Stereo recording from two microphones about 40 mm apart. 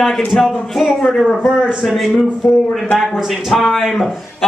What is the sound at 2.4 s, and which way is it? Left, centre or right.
Speech, centre.